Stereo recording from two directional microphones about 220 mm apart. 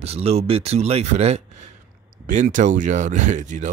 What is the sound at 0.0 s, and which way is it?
Speech, 30° right (ahead or behind).